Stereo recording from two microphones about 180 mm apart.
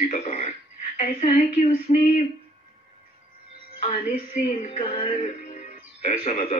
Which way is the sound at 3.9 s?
40° left (ahead or behind).